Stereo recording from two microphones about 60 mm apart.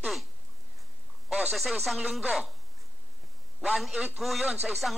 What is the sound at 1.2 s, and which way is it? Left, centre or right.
Speech, centre.